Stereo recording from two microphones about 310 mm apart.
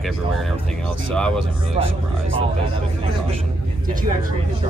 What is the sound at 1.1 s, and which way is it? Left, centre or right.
Speech, centre.